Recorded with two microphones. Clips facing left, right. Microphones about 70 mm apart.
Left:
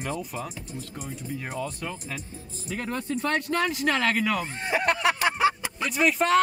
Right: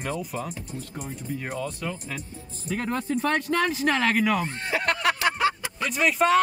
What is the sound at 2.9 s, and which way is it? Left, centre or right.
Speech, right.